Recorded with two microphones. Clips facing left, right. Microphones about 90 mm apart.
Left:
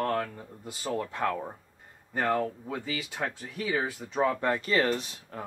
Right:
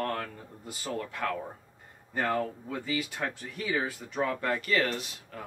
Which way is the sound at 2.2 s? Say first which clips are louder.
Left 2 dB; 5° left (ahead or behind).